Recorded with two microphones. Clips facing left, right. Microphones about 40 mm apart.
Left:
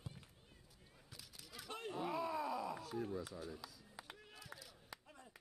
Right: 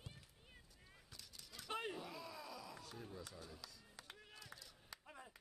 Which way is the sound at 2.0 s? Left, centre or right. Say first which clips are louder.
Left 11 dB; left.